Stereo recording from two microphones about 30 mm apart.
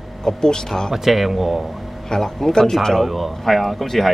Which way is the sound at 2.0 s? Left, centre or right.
Centre.